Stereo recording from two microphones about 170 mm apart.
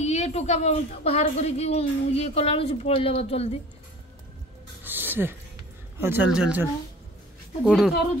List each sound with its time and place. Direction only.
0.0 s a woman's voice: 40° left (ahead or behind)
4.8 s a sound: 10° right (ahead or behind)
5.9 s speech: 10° right (ahead or behind)